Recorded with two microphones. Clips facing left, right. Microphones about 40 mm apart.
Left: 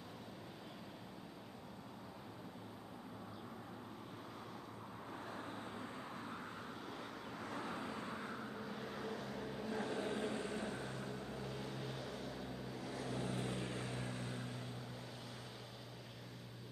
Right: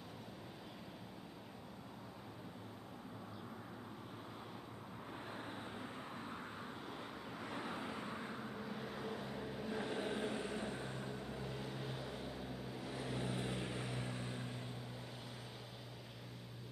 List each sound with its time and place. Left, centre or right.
5.3 s vehicle: right
6.1 s vehicle: centre
7.4 s vehicle: right; by 9.8 s centre
9.8 s vehicle: right
12.9 s vehicle: right